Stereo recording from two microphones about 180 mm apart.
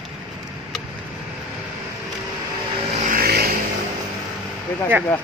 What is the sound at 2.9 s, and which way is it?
Vehicle, 50° right (ahead or behind).